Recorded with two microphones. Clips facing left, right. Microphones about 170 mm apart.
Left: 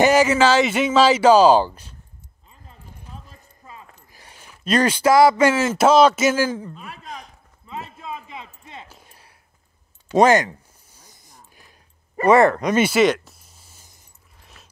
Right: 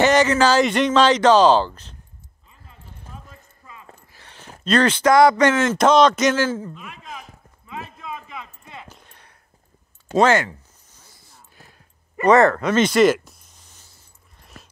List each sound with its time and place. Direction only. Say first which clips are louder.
0.0 s speech: left 1 dB; 10° left (ahead or behind)
2.5 s keys jangling: left 2 dB; 35° left (ahead or behind)
3.3 s clip-clop: left 1 dB; 35° left (ahead or behind)
4.1 s a sound: right 1 dB; 10° left (ahead or behind)
4.6 s speech: even; 10° left (ahead or behind)
6.7 s a man's voice: left 1 dB; 40° left (ahead or behind)
7.6 s a sound: left 1 dB; 30° left (ahead or behind)
8.8 s a sound: right 1 dB; 10° left (ahead or behind)
14.4 s dog: right 6 dB; centre (ahead or behind)